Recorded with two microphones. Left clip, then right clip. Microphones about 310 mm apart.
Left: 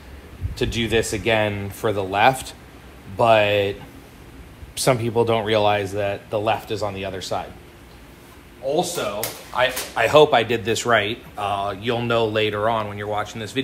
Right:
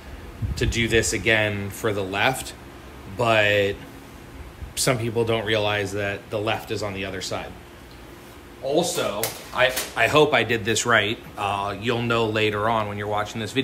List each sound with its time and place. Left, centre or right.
0.6 s speech: centre
4.7 s speech: centre
8.6 s speech: centre